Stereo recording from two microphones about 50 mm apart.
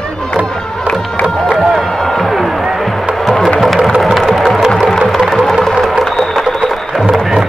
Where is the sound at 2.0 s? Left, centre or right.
Centre.